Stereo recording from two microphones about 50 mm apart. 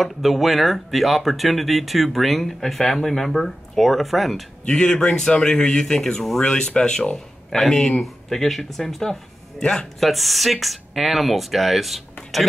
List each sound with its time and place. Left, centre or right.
0.0 s speech: centre
4.6 s speech: centre
7.5 s speech: centre
9.6 s speech: centre
9.9 s speech: centre